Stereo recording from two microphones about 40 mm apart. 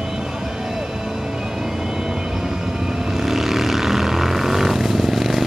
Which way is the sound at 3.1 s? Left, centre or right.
Centre.